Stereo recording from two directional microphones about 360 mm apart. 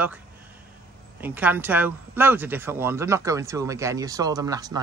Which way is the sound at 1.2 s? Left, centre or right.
Centre.